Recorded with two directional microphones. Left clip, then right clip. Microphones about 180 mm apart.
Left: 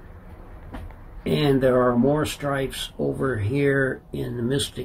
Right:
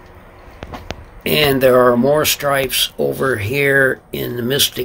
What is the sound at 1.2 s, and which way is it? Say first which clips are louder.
Speech: right 8 dB; 15° right (ahead or behind).